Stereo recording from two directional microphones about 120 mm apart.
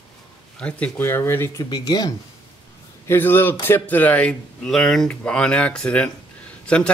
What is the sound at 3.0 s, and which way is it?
Speech, 20° left (ahead or behind).